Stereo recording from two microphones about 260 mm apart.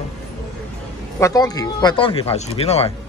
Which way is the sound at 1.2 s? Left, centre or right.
Centre.